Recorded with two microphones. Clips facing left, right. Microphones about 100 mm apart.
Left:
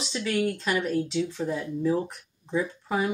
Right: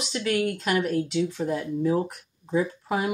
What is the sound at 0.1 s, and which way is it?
Speech, 5° right (ahead or behind).